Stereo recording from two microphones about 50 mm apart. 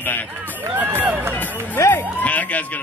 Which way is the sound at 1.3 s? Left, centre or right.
Left.